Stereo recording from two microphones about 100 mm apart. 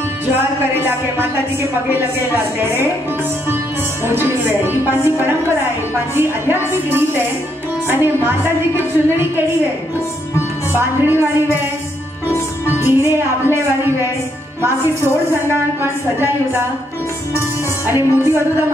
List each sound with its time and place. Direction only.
0.7 s a woman's voice: 20° right (ahead or behind)
4.0 s a woman's voice: 25° right (ahead or behind)
10.7 s a woman's voice: 20° right (ahead or behind)
12.6 s music: 25° right (ahead or behind)
15.8 s a woman's voice: 25° right (ahead or behind)
17.4 s music: 25° right (ahead or behind)